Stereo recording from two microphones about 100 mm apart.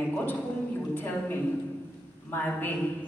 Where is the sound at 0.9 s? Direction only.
20° left (ahead or behind).